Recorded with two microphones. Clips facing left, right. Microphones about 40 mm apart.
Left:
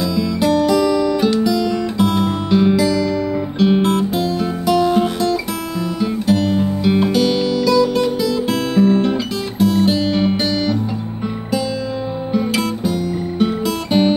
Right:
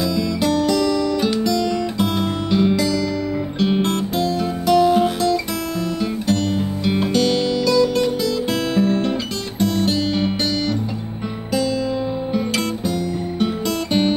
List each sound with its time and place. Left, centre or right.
0.0 s music: centre
12.3 s music: centre